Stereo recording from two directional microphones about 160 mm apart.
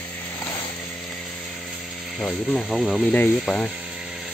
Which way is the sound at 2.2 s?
5° left (ahead or behind).